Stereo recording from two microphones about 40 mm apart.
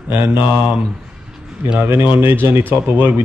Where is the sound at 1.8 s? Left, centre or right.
Right.